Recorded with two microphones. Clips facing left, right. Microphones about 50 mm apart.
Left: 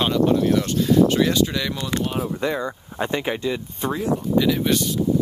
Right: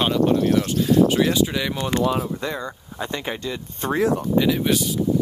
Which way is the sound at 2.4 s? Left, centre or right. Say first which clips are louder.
Left 4 dB; centre.